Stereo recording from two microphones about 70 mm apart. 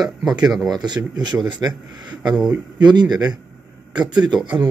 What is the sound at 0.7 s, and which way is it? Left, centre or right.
A man's voice, right.